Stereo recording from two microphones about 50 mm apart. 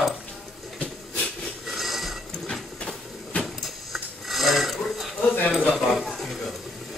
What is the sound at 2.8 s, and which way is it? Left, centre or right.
Train, centre.